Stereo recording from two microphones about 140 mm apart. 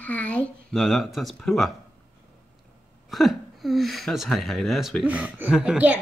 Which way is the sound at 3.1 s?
Centre (ahead or behind).